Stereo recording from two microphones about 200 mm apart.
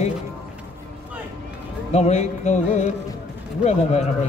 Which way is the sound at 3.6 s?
35° left (ahead or behind).